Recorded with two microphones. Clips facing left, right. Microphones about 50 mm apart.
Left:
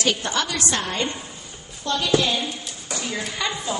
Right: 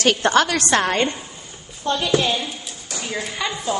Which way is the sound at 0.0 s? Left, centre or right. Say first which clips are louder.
Right 7 dB; right.